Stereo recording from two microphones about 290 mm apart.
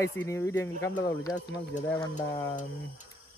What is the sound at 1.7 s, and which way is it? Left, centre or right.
Speech, left.